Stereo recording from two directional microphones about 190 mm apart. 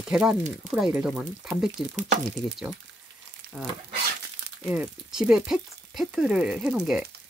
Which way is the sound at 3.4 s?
45° right (ahead or behind).